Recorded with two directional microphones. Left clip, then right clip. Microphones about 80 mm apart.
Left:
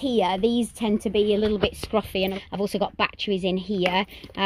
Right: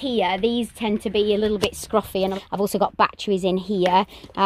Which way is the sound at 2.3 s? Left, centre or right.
Right.